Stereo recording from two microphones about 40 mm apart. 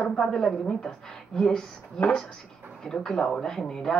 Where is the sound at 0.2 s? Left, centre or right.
Centre.